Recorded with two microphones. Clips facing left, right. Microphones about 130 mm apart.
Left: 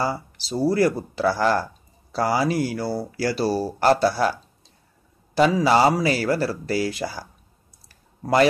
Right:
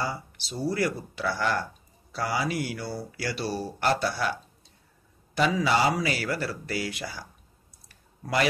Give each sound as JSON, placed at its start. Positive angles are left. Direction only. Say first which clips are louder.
{"t": 0.0, "sound": "speech", "louder": "left 6 dB", "side_deg": 35}
{"t": 7.9, "sound": "clicking", "louder": "left 8 dB", "side_deg": 35}